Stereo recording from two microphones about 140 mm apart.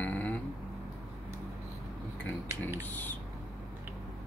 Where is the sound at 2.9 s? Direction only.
15° left (ahead or behind).